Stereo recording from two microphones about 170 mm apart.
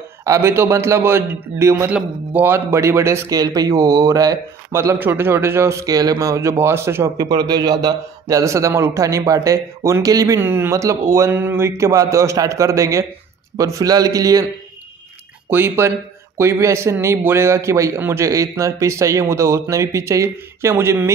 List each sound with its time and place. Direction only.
0.2 s a man's voice: 15° right (ahead or behind)
15.5 s speech: 15° right (ahead or behind)